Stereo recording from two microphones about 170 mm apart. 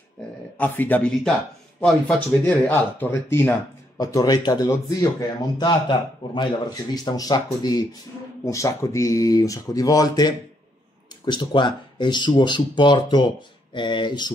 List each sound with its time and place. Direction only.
0.6 s speech: 10° left (ahead or behind); by 14.3 s 25° left (ahead or behind)